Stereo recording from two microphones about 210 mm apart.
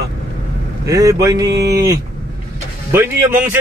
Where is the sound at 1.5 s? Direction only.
50° right (ahead or behind).